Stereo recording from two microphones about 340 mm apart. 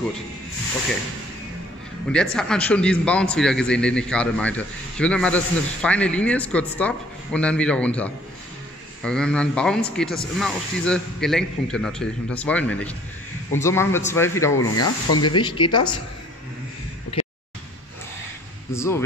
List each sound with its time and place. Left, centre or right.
2.3 s a man's voice: centre
14.8 s speech: left
15.2 s speech: centre
17.1 s a sound: centre
18.7 s speech: centre